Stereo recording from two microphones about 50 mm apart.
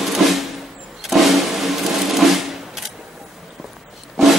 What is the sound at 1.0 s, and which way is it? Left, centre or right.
Vehicle, centre.